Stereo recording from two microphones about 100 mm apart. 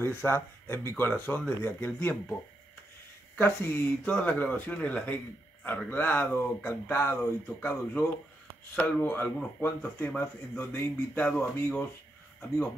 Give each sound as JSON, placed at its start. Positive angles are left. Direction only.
{"t": 0.0, "sound": "speech", "side_deg": 25}
{"t": 3.3, "sound": "speech", "side_deg": 20}